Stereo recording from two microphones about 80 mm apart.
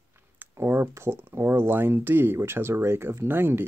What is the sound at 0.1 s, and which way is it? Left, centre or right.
Speech, right.